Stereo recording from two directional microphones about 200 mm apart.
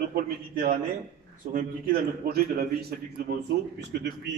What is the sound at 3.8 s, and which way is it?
Speech, 55° right (ahead or behind).